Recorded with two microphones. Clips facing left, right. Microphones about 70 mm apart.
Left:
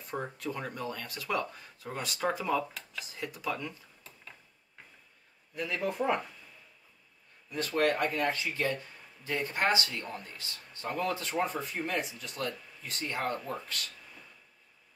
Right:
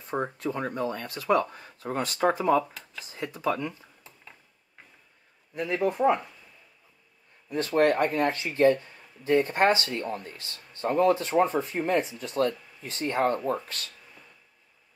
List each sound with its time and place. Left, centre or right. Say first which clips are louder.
0.4 s speech: right 7 dB; right
5.5 s a man's voice: right 7 dB; right
5.9 s speech: right 7 dB; centre
7.5 s speech: right 6 dB; right